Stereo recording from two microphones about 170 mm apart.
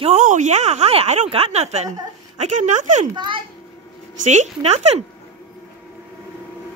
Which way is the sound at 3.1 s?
25° right (ahead or behind).